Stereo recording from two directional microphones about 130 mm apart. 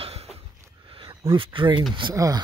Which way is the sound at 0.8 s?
45° right (ahead or behind).